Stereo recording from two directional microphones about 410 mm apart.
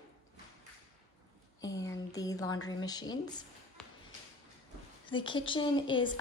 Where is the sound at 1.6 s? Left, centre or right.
Centre.